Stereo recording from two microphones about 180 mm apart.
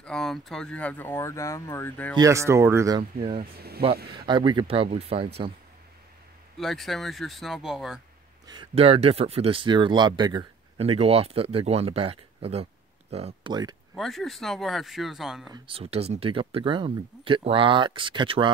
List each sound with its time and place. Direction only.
0.0 s speech: 5° left (ahead or behind)
2.1 s speech: 15° right (ahead or behind)
3.0 s speech: 30° right (ahead or behind)
3.5 s speech: 60° right (ahead or behind)
4.3 s speech: 25° right (ahead or behind)
6.6 s speech: centre (ahead or behind)
8.5 s speech: 30° right (ahead or behind)
13.5 s speech: 25° right (ahead or behind)
13.9 s speech: centre (ahead or behind)
15.5 s speech: 30° right (ahead or behind)